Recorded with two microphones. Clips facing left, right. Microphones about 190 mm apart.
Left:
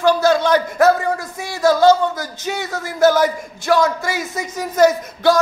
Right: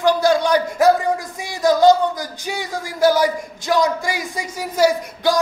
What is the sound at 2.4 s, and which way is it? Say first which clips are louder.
A man's voice: left 4 dB; 15° right (ahead or behind).